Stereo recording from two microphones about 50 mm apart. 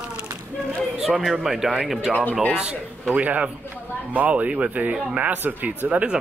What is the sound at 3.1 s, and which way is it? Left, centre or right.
Speech, right.